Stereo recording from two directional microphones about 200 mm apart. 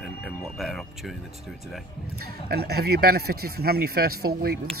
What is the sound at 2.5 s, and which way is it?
Speech, 50° right (ahead or behind).